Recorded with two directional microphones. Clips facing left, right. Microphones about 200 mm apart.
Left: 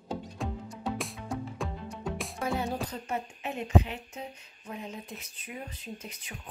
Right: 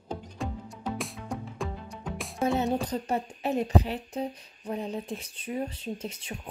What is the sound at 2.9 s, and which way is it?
A woman's voice, 35° right (ahead or behind).